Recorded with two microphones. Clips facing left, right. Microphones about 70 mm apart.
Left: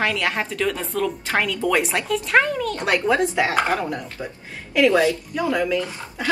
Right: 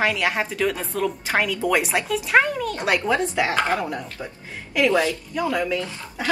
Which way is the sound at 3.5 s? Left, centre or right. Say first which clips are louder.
Left 1 dB; left.